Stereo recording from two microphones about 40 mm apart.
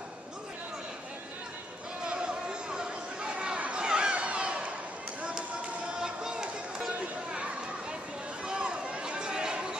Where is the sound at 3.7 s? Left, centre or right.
Right.